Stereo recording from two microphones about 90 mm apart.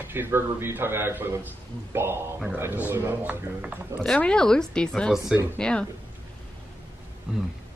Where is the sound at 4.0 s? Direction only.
10° left (ahead or behind).